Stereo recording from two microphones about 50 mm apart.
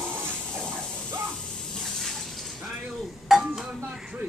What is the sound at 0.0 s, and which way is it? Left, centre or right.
Music, right.